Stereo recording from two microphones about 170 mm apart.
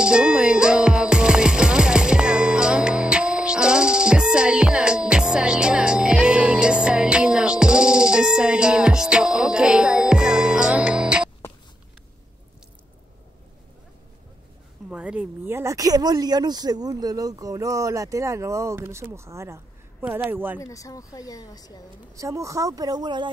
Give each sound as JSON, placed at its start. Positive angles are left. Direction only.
{"t": 0.0, "sound": "music", "side_deg": -5}
{"t": 14.9, "sound": "speech", "side_deg": -5}
{"t": 20.6, "sound": "speech", "side_deg": 20}
{"t": 22.1, "sound": "speech", "side_deg": -20}